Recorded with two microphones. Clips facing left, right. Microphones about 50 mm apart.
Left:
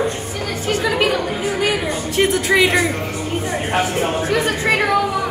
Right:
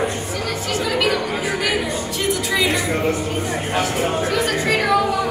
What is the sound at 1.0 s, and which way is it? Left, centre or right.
Chatter, left.